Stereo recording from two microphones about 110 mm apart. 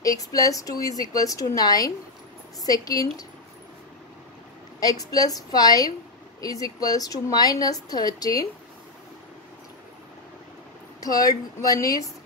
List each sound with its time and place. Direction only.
0.0 s speech: 30° left (ahead or behind)
4.7 s speech: 35° left (ahead or behind)
11.0 s speech: 35° left (ahead or behind)